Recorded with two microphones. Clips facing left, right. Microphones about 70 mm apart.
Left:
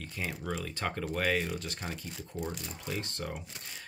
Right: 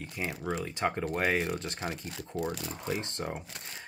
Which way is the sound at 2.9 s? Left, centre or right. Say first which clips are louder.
Right 3 dB; right.